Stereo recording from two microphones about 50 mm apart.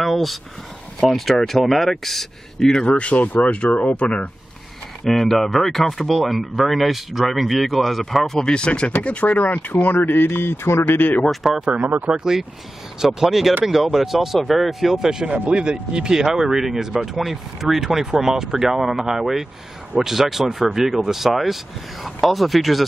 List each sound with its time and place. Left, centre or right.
0.0 s a sound: centre
1.0 s speech: centre
2.9 s speech: left
5.0 s speech: centre; by 11.0 s left
11.0 s speech: left
11.4 s speech: centre